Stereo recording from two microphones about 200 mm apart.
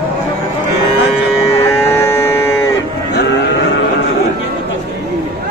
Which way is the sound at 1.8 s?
15° left (ahead or behind).